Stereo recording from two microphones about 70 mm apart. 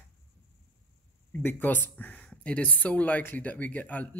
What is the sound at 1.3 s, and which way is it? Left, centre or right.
Speech, left.